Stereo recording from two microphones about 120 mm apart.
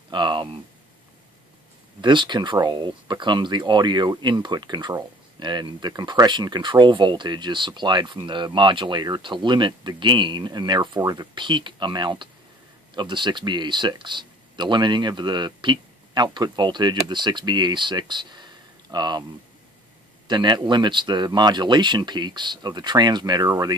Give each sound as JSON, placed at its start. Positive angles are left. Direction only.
{"t": 0.1, "sound": "speech", "side_deg": -40}
{"t": 2.0, "sound": "speech", "side_deg": -40}
{"t": 20.2, "sound": "speech", "side_deg": -40}